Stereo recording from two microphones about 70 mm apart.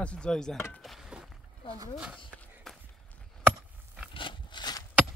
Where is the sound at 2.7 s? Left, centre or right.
Centre.